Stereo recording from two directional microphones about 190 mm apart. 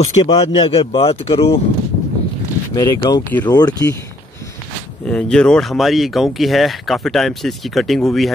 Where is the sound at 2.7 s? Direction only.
20° left (ahead or behind).